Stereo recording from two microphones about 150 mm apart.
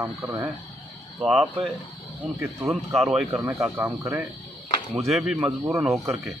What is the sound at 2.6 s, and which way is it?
Speech, centre (ahead or behind).